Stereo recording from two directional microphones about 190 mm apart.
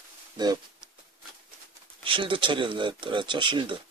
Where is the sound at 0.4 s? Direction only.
20° right (ahead or behind).